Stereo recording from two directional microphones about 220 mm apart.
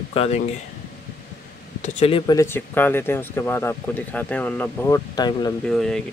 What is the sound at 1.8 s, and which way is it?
Speech, 30° left (ahead or behind).